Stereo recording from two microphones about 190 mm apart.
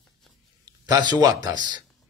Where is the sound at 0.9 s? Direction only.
20° right (ahead or behind).